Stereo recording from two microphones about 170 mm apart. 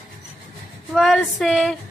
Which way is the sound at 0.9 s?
Centre (ahead or behind).